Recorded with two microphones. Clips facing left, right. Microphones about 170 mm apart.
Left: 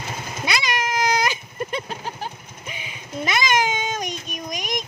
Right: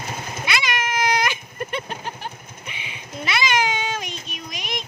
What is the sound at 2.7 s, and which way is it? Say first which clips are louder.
Music: left 4 dB; 45° left (ahead or behind).